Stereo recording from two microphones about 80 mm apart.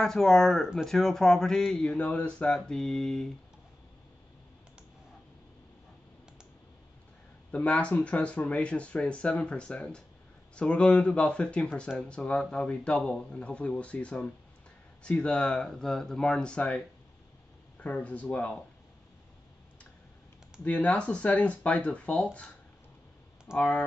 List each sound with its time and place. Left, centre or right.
0.0 s speech: centre
7.5 s speech: centre
20.6 s speech: centre
23.5 s speech: centre